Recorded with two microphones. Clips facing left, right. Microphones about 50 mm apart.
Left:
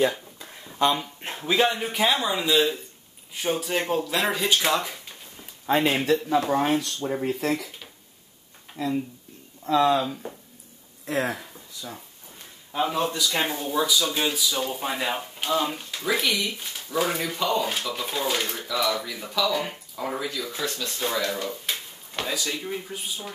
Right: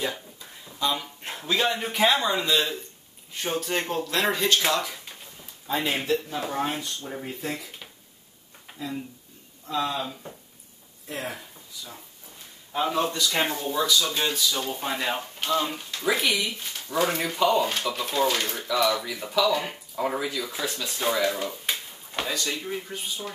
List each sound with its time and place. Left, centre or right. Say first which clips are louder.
0.4 s a sound: left 7 dB; left
1.3 s speech: left 3 dB; centre
5.7 s speech: left 4 dB; left
7.0 s speech: left 8 dB; left
7.2 s speech: left 7 dB; left
8.7 s a sound: left 6 dB; centre
9.7 s speech: left 8 dB; left
11.1 s speech: left 7 dB; left
12.7 s speech: even; centre
16.5 s speech: even; centre
22.6 s speech: even; centre